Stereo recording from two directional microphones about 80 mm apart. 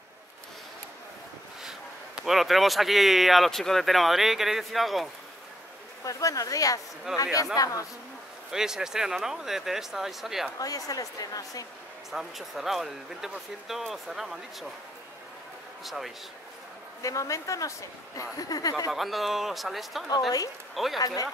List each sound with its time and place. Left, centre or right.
1.6 s speech: centre
6.0 s speech: left
7.1 s speech: centre
7.5 s speech: left
8.5 s speech: centre
10.6 s speech: left
12.1 s speech: centre
15.8 s speech: centre
17.0 s speech: left
18.9 s speech: centre
21.0 s speech: left